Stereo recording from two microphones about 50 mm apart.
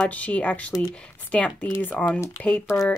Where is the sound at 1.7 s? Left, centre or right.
Left.